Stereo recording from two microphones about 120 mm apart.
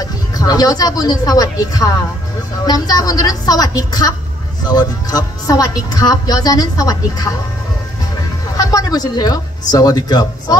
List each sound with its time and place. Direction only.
0.0 s a woman's voice: 30° left (ahead or behind)
8.5 s a woman's voice: 30° left (ahead or behind)